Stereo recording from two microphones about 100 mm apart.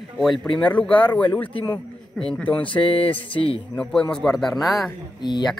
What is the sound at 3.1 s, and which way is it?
Speech, 60° left (ahead or behind).